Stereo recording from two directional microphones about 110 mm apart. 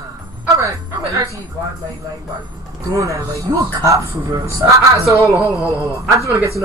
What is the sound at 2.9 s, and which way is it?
Speech, 30° right (ahead or behind).